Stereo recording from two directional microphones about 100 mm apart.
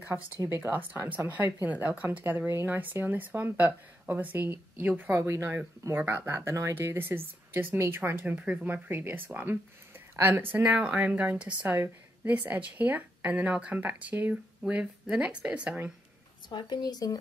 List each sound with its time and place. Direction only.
0.1 s speech: 15° right (ahead or behind)
16.4 s speech: 45° left (ahead or behind)